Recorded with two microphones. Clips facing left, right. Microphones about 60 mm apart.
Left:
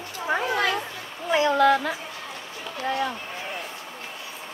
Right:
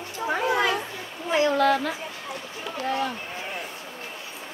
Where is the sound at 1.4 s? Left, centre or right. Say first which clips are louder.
Left 3 dB; left.